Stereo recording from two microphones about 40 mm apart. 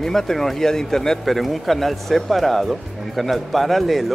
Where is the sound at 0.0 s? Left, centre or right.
Centre.